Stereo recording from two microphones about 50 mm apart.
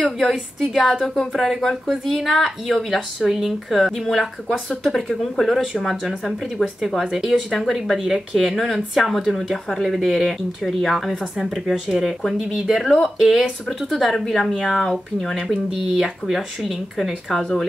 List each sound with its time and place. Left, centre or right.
0.0 s speech: centre
6.6 s speech: centre
7.1 s speech: centre
8.0 s speech: centre
15.4 s speech: centre